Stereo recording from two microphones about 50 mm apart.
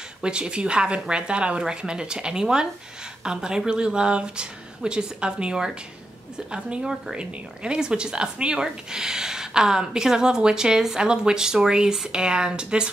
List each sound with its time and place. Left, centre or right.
0.2 s a woman's voice: centre